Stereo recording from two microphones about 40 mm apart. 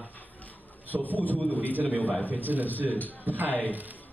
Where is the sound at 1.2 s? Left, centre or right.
Left.